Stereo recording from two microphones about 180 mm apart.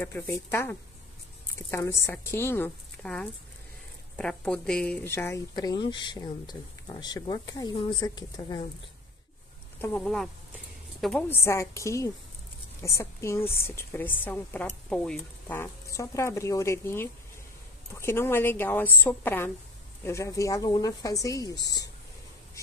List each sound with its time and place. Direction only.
0.0 s a woman's voice: 15° left (ahead or behind)
9.8 s a woman's voice: 5° left (ahead or behind)